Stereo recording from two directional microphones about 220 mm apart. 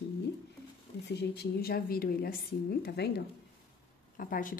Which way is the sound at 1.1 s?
50° left (ahead or behind).